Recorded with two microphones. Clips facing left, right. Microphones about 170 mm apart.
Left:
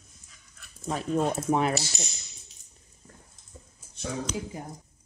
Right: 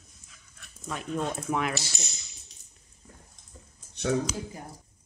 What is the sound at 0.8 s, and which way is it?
Speech, 35° left (ahead or behind).